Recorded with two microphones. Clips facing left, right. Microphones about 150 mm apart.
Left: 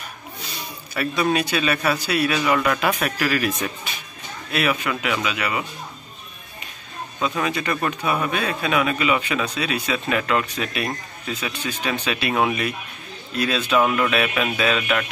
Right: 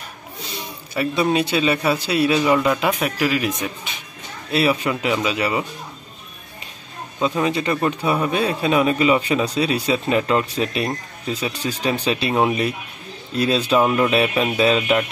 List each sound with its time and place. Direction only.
0.9 s speech: 25° right (ahead or behind)
4.5 s speech: 30° right (ahead or behind)
7.2 s a man's voice: 30° right (ahead or behind)